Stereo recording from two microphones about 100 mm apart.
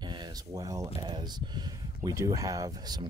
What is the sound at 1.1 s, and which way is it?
Speech, 55° right (ahead or behind).